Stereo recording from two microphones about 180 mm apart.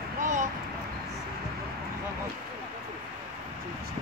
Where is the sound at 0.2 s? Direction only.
45° right (ahead or behind).